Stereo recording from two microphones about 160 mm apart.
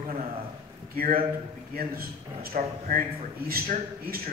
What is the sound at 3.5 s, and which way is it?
Speech, 65° right (ahead or behind).